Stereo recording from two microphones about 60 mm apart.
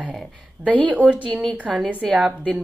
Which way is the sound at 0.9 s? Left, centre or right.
Right.